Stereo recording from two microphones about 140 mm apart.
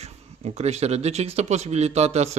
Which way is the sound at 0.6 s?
50° right (ahead or behind).